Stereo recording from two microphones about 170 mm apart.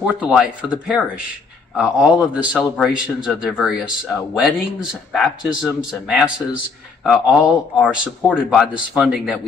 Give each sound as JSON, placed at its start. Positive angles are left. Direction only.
{"t": 0.0, "sound": "a man's voice", "side_deg": -5}
{"t": 8.2, "sound": "speech", "side_deg": 10}
{"t": 8.9, "sound": "a man's voice", "side_deg": -5}